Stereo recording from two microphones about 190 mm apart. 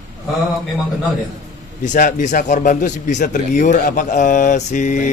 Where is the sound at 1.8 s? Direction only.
45° left (ahead or behind).